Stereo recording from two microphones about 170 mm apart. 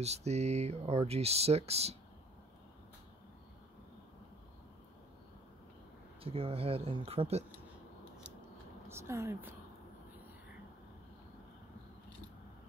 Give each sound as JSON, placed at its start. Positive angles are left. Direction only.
{"t": 0.0, "sound": "speech", "side_deg": -40}
{"t": 6.2, "sound": "speech", "side_deg": -35}
{"t": 8.8, "sound": "speech", "side_deg": -15}